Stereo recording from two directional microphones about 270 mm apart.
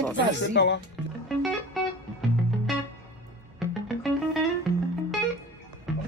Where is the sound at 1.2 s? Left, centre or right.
Centre.